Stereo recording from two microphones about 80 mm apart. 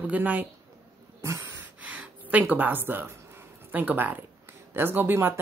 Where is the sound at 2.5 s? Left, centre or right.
Right.